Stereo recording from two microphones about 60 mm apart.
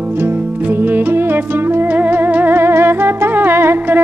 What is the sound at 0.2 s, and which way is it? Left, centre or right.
Music, right.